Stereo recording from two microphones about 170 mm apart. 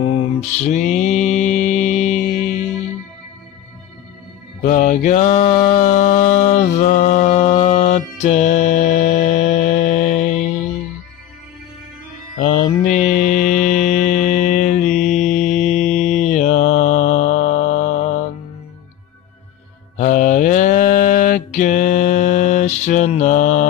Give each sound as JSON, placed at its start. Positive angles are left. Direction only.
{"t": 0.7, "sound": "mantra", "side_deg": 45}
{"t": 4.6, "sound": "mantra", "side_deg": 50}
{"t": 12.4, "sound": "mantra", "side_deg": 50}
{"t": 20.0, "sound": "mantra", "side_deg": 45}